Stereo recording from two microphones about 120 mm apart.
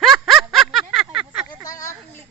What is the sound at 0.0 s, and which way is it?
Snicker, centre (ahead or behind).